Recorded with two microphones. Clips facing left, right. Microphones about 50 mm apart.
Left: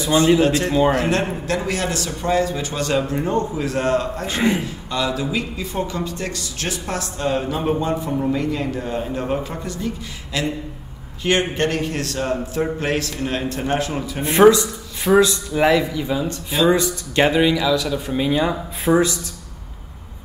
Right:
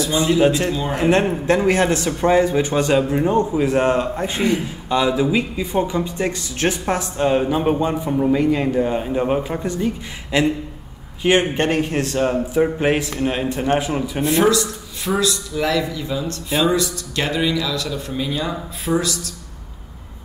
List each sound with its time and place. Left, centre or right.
0.0 s speech: left
0.9 s a man's voice: right
8.4 s a man's voice: centre
14.2 s speech: left